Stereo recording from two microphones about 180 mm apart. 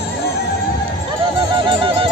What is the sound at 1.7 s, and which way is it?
Music, 30° right (ahead or behind).